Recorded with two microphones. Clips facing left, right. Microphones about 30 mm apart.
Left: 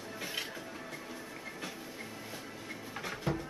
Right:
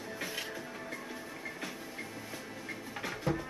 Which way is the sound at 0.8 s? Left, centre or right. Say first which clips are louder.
Right 2 dB; centre.